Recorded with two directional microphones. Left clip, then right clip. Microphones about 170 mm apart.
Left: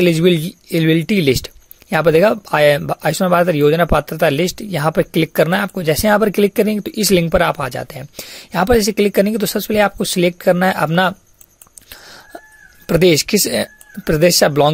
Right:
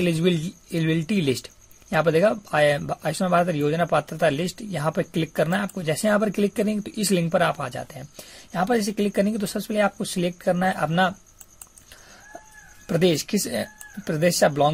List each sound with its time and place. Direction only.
0.0 s speech: 45° left (ahead or behind)
12.8 s speech: 50° left (ahead or behind)